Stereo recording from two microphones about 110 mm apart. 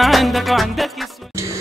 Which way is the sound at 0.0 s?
Centre (ahead or behind).